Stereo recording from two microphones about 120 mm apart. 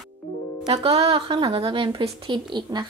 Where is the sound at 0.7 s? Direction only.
55° right (ahead or behind).